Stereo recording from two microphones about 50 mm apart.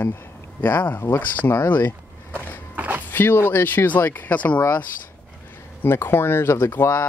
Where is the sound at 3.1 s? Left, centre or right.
Left.